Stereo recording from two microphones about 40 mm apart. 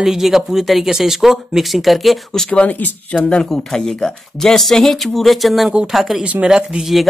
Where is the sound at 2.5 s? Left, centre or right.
Left.